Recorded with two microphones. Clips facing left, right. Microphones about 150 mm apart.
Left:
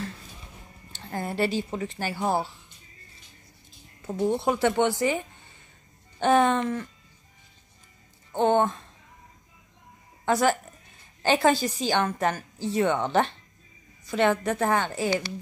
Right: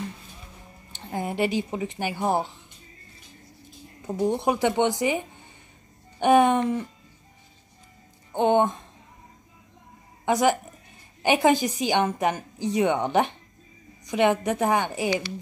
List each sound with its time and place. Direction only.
0.9 s a woman's voice: 15° right (ahead or behind)
4.0 s a woman's voice: 15° right (ahead or behind)
8.3 s a woman's voice: 15° right (ahead or behind)
10.2 s a woman's voice: 15° right (ahead or behind)